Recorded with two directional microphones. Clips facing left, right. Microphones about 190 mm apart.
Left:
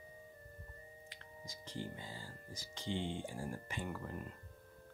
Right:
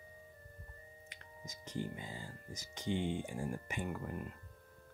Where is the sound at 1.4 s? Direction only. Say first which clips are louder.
Right 4 dB; 15° right (ahead or behind).